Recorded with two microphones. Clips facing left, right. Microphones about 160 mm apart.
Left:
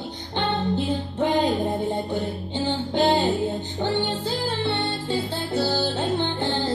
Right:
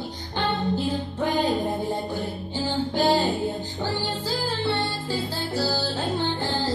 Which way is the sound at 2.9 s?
20° left (ahead or behind).